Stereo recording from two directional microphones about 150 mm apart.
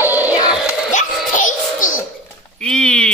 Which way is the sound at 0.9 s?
60° left (ahead or behind).